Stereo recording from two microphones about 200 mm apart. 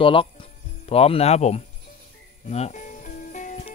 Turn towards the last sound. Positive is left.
turn(degrees=40)  # may be behind; listen again after turning